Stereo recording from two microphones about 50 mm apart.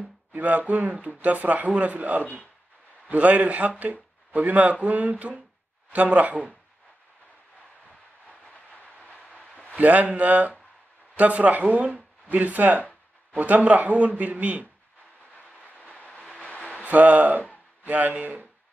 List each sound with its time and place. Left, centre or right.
0.3 s speech: right
8.3 s train: left
9.8 s speech: right
15.6 s train: left
16.8 s speech: right